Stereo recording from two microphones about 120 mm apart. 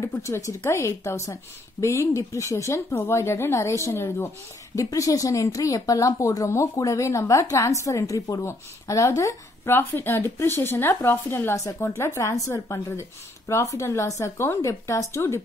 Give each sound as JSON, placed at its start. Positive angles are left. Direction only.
{"t": 0.0, "sound": "a woman's voice", "side_deg": 25}